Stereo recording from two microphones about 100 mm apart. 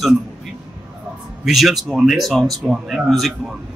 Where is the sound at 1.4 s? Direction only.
Centre (ahead or behind).